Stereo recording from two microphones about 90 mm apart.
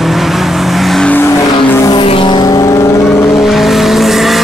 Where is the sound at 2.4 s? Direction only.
40° left (ahead or behind).